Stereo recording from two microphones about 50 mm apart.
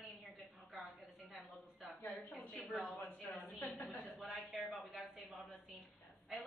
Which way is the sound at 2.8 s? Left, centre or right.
Left.